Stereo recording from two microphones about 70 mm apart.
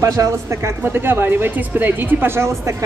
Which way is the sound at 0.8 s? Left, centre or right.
Right.